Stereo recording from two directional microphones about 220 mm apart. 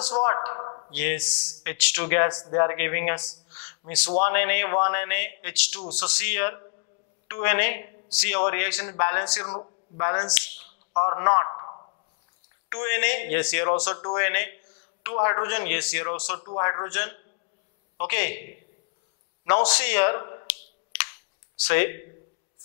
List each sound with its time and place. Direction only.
0.4 s speech: 25° left (ahead or behind)
0.9 s a man's voice: 10° left (ahead or behind)
9.4 s a man's voice: 25° left (ahead or behind)
16.3 s speech: 30° left (ahead or behind)
16.6 s a man's voice: 20° left (ahead or behind)
19.4 s a man's voice: 10° left (ahead or behind)
21.6 s a man's voice: 15° left (ahead or behind)